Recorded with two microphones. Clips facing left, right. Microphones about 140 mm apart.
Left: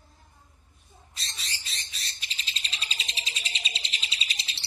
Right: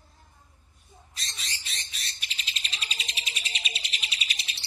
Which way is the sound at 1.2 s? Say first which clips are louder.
Even; 30° left (ahead or behind).